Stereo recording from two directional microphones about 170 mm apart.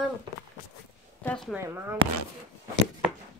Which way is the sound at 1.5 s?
15° right (ahead or behind).